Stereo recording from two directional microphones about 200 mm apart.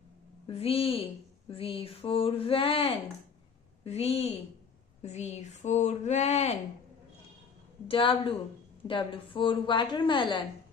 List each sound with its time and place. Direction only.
0.5 s a woman's voice: 30° left (ahead or behind)
7.9 s a woman's voice: 25° left (ahead or behind)